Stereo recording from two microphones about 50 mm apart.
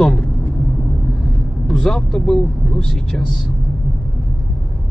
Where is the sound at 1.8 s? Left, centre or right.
Centre.